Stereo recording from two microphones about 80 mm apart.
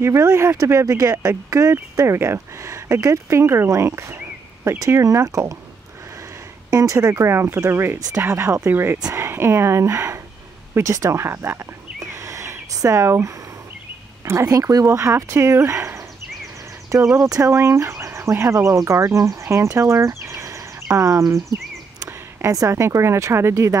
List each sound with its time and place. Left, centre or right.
0.0 s speech: right
6.7 s speech: right